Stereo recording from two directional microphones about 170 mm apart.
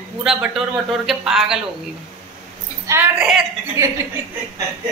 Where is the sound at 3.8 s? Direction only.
15° right (ahead or behind).